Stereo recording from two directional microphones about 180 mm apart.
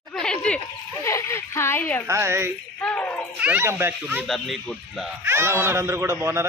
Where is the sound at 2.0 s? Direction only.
15° right (ahead or behind).